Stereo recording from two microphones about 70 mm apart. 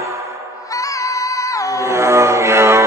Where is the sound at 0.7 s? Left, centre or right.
Left.